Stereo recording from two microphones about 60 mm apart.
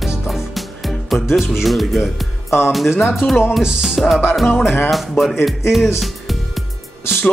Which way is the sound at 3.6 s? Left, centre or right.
Centre.